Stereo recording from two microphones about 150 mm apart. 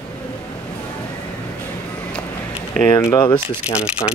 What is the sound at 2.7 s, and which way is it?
Speech, 5° left (ahead or behind).